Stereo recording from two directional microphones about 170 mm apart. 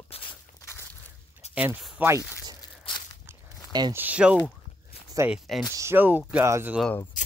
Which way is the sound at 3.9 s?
10° right (ahead or behind).